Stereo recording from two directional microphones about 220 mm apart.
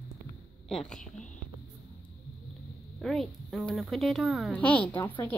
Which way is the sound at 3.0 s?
Centre (ahead or behind).